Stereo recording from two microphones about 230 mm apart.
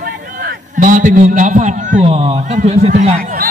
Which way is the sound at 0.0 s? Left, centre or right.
Right.